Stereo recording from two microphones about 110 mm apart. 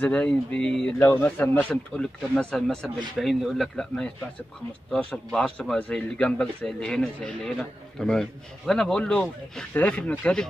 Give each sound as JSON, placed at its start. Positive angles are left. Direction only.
{"t": 0.0, "sound": "a man's voice", "side_deg": 10}
{"t": 2.3, "sound": "a man's voice", "side_deg": 5}